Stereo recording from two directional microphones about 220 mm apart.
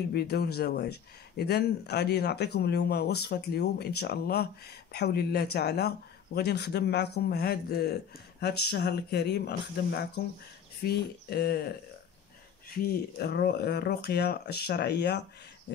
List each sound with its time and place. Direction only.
0.1 s speech: 45° left (ahead or behind)
12.7 s speech: 45° left (ahead or behind)